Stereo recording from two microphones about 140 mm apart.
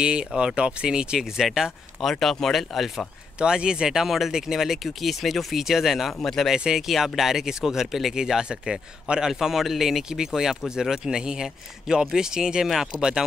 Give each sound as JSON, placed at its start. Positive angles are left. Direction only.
{"t": 0.0, "sound": "speech", "side_deg": -5}